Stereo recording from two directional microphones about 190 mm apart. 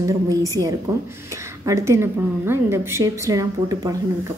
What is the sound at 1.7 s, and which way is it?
Speech, 15° right (ahead or behind).